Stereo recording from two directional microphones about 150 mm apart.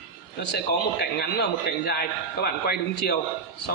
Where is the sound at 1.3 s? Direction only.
90° left.